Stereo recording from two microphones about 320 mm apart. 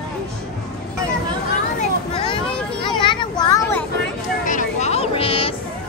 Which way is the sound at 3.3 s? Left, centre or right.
Centre.